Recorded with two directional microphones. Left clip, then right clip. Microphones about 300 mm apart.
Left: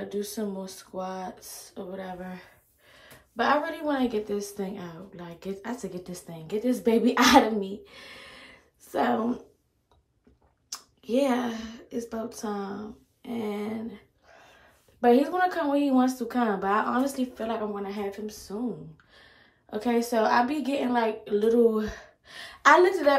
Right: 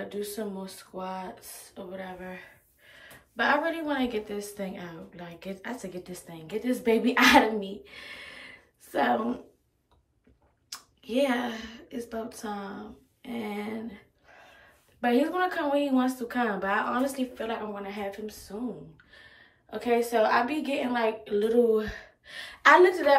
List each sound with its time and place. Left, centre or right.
0.1 s a woman's voice: centre
3.3 s a woman's voice: centre
8.2 s a sound: centre
10.7 s speech: centre
15.0 s a woman's voice: centre
19.7 s a woman's voice: centre
20.7 s a woman's voice: centre
21.2 s a woman's voice: centre